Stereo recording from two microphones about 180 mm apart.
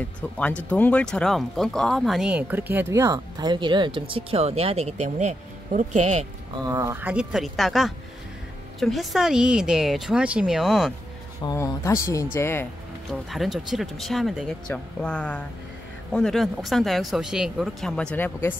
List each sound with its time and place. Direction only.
0.4 s speech: 5° left (ahead or behind); by 6.2 s 40° right (ahead or behind)
6.7 s speech: 15° right (ahead or behind)
11.4 s speech: 15° left (ahead or behind)
13.1 s speech: centre (ahead or behind)